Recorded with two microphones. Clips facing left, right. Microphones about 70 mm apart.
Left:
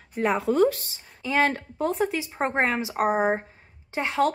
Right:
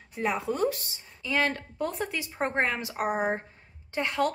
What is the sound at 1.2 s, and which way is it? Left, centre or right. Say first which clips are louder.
Speech: left 4 dB; left.